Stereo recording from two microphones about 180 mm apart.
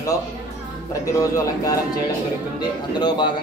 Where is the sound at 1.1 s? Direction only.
20° left (ahead or behind).